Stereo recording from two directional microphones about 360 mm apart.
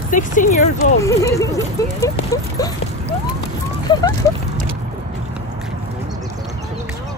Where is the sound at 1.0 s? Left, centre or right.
Centre.